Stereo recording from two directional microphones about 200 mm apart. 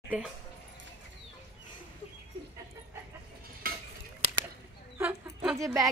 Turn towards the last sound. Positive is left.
turn(degrees=-15)  # may be behind; listen again after turning